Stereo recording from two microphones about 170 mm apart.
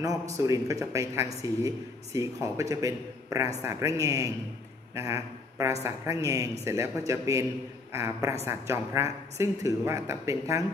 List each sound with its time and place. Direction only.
0.0 s a man's voice: 20° right (ahead or behind)